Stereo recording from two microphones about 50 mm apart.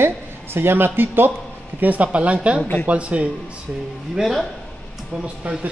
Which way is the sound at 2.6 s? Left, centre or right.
Left.